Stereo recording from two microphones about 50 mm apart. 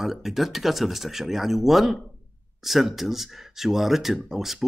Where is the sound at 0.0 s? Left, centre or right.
Centre.